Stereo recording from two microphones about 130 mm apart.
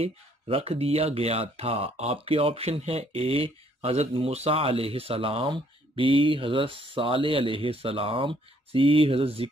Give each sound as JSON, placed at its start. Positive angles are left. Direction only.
{"t": 0.0, "sound": "speech", "side_deg": -45}